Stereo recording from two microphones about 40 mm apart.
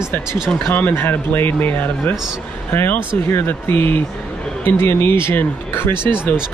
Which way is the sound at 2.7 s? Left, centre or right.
Left.